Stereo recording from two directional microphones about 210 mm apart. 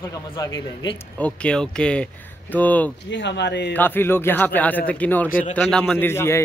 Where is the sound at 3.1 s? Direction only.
55° left (ahead or behind).